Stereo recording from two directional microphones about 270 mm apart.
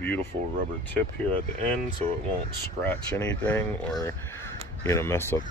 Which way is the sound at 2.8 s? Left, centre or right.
Centre.